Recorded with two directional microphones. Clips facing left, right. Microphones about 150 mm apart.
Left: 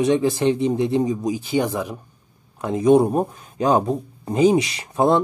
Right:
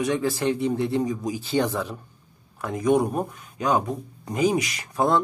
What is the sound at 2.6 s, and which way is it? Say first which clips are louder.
Speech: left 6 dB; 25° left (ahead or behind).